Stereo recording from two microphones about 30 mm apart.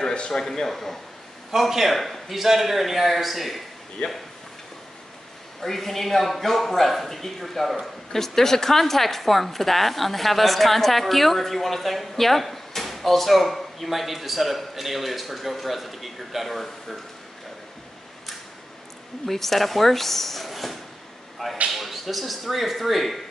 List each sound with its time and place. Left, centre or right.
0.3 s a man's voice: centre
1.5 s a man's voice: centre
4.0 s speech: left
5.6 s a man's voice: centre
19.2 s a woman's voice: centre